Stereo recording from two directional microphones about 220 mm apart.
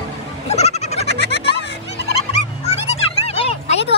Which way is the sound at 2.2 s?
30° left (ahead or behind).